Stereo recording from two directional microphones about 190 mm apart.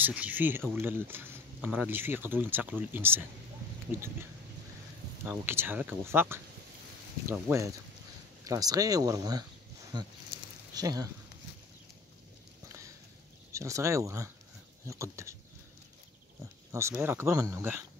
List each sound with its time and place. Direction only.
0.0 s speech: 10° right (ahead or behind)
5.2 s speech: 10° right (ahead or behind)
13.5 s speech: 15° right (ahead or behind)
16.7 s speech: 15° right (ahead or behind)